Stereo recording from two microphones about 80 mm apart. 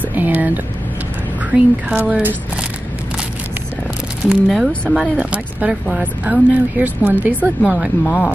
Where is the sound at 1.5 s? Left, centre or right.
Centre.